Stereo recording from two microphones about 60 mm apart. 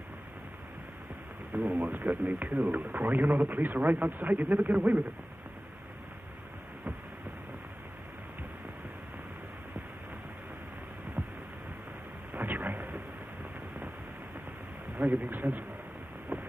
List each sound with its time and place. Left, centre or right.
1.5 s a man's voice: right
12.3 s thunder: right
15.0 s a man's voice: right
16.3 s a sound: right